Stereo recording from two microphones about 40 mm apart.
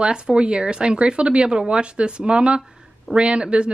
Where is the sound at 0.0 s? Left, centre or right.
Right.